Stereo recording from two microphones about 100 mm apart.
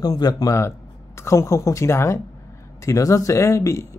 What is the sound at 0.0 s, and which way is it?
Speech, 40° left (ahead or behind).